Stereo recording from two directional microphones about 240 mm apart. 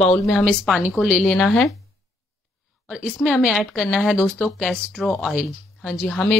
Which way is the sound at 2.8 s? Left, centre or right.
Centre.